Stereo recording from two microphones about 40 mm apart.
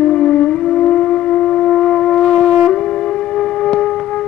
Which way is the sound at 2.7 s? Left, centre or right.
Left.